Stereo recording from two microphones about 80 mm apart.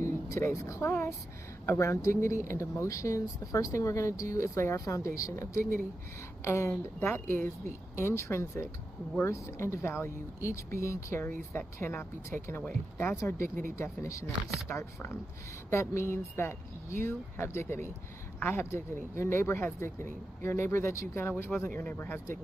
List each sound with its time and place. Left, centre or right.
0.0 s a sound: left
0.8 s speech: left
1.7 s speech: left
4.7 s speech: left
11.2 s speech: left